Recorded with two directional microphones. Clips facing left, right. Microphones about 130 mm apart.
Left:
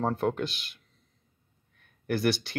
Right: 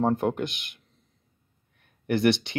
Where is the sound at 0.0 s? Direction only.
15° right (ahead or behind).